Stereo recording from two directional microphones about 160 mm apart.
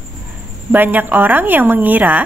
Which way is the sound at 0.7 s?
10° right (ahead or behind).